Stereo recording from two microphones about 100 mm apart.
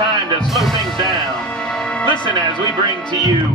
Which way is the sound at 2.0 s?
50° left (ahead or behind).